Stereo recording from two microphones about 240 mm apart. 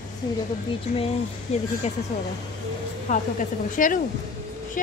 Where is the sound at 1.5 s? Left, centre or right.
Left.